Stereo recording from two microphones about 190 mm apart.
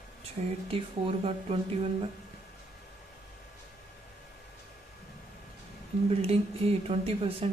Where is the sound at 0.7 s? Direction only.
30° right (ahead or behind).